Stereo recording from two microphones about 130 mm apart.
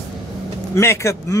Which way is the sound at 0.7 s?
20° left (ahead or behind).